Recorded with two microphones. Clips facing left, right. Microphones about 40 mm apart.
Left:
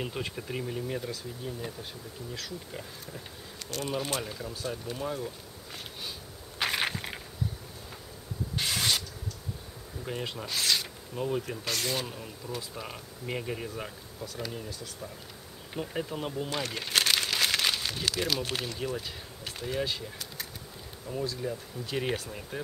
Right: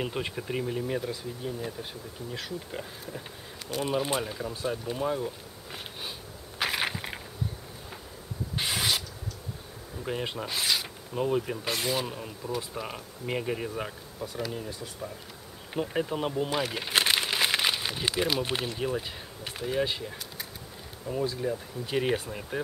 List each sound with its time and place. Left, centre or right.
0.0 s speech: centre
6.6 s a sound: centre
8.5 s spray: centre
10.0 s speech: centre
14.7 s speech: centre